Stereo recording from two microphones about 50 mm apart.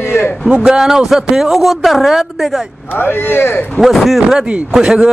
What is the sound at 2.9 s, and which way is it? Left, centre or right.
Speech, left.